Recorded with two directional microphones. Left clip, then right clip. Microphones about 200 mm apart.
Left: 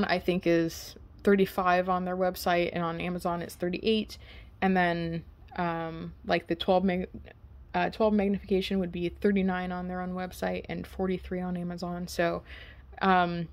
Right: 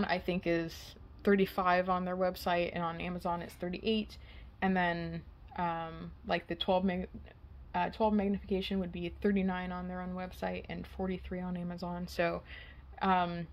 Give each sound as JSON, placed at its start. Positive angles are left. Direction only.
{"t": 0.0, "sound": "speech", "side_deg": 30}